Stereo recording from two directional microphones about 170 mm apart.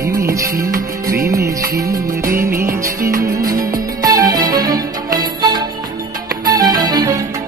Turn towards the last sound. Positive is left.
turn(degrees=-25)  # may be behind; listen again after turning